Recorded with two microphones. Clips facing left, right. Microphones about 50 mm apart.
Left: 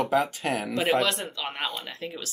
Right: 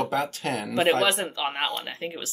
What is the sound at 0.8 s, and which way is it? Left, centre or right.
Speech, centre.